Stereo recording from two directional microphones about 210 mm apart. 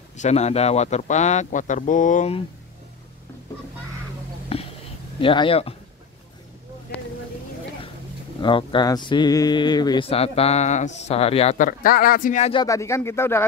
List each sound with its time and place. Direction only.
0.2 s speech: 30° left (ahead or behind)
4.5 s a sound: 30° left (ahead or behind)
5.2 s speech: 25° left (ahead or behind)
8.4 s speech: 20° left (ahead or behind)
12.5 s speech: 15° left (ahead or behind)